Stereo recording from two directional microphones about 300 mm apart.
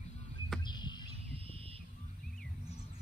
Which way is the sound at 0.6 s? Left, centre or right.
Centre.